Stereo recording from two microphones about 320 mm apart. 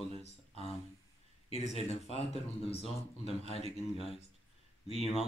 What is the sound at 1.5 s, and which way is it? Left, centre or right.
Speech, centre.